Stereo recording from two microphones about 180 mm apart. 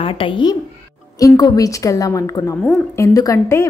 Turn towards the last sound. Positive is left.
turn(degrees=15)  # may be behind; listen again after turning